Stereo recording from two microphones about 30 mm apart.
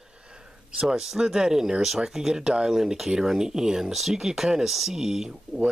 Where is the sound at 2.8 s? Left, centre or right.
Centre.